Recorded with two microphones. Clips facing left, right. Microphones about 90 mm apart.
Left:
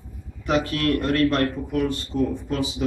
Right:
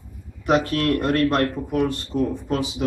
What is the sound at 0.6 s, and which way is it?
Speech, 35° right (ahead or behind).